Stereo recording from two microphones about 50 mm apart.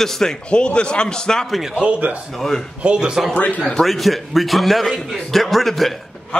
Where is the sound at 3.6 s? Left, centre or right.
Centre.